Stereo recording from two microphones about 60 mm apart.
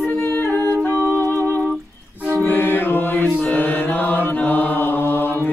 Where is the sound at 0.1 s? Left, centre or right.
Left.